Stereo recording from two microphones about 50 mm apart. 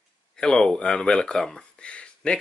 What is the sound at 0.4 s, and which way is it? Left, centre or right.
Speech, centre.